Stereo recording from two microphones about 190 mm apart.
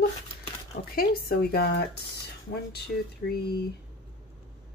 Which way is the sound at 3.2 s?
55° left (ahead or behind).